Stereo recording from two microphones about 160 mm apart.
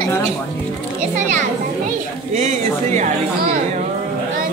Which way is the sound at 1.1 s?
50° right (ahead or behind).